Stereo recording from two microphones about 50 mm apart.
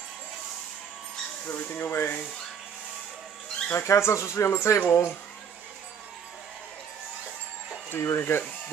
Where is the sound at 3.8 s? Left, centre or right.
Left.